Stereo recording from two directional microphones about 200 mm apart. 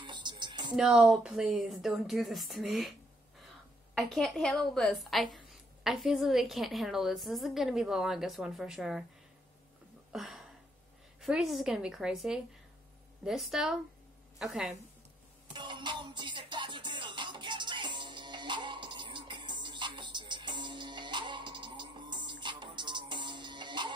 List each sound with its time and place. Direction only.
0.0 s music: 20° right (ahead or behind)
0.7 s a woman's voice: centre (ahead or behind)
3.9 s a woman's voice: centre (ahead or behind)
10.1 s a sound: centre (ahead or behind)
11.1 s a woman's voice: centre (ahead or behind)
15.5 s music: 25° right (ahead or behind)